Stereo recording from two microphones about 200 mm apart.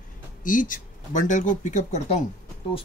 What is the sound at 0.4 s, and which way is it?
Speech, 40° left (ahead or behind).